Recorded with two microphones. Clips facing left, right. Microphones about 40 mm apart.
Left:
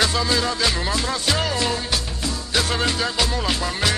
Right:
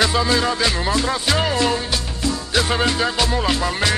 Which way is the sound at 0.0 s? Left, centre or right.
Centre.